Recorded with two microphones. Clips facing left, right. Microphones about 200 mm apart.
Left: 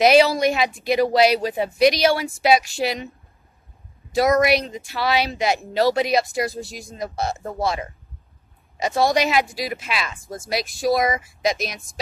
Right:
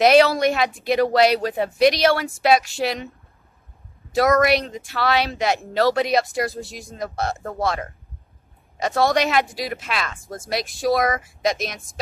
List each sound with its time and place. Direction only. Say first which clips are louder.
0.0 s a woman's voice: even; 5° left (ahead or behind)
4.5 s a woman's voice: even; centre (ahead or behind)
11.0 s speech: even; 15° left (ahead or behind)
11.4 s a woman's voice: even; centre (ahead or behind)